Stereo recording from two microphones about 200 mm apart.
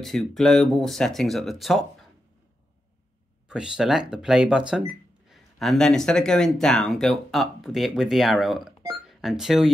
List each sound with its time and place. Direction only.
0.0 s speech: centre (ahead or behind)
3.4 s speech: 5° right (ahead or behind)